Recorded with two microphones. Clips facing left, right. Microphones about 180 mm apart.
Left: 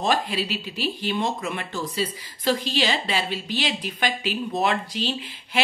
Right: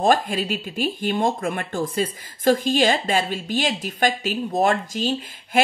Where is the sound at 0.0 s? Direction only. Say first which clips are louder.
Right 4 dB; 50° right (ahead or behind).